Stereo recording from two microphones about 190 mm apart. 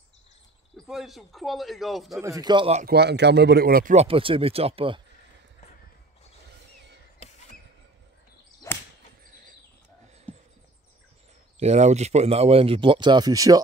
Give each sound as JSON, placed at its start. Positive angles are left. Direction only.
{"t": 0.8, "sound": "a man's voice", "side_deg": 0}
{"t": 2.1, "sound": "speech", "side_deg": -15}
{"t": 2.8, "sound": "a man's voice", "side_deg": -60}
{"t": 3.9, "sound": "speech", "side_deg": -30}
{"t": 8.6, "sound": "whip", "side_deg": 15}
{"t": 9.3, "sound": "a sound", "side_deg": -45}
{"t": 10.3, "sound": "a sound", "side_deg": 5}
{"t": 11.6, "sound": "speech", "side_deg": -35}